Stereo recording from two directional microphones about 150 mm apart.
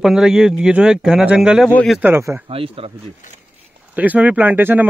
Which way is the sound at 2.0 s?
15° right (ahead or behind).